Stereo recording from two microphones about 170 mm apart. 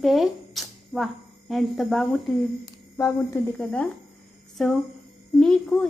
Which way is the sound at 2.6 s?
20° left (ahead or behind).